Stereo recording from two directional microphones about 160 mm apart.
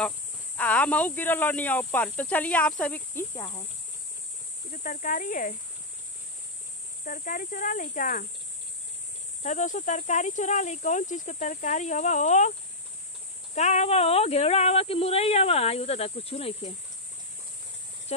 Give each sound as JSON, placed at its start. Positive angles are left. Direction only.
{"t": 0.6, "sound": "speech", "side_deg": 10}
{"t": 3.3, "sound": "speech", "side_deg": 30}
{"t": 4.8, "sound": "speech", "side_deg": 55}
{"t": 7.1, "sound": "speech", "side_deg": 60}
{"t": 9.4, "sound": "speech", "side_deg": 50}
{"t": 13.6, "sound": "speech", "side_deg": 45}